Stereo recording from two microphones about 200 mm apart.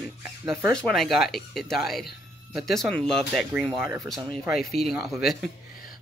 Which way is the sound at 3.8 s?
15° right (ahead or behind).